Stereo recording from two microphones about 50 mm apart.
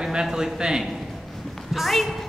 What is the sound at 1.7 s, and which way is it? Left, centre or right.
Speech, centre.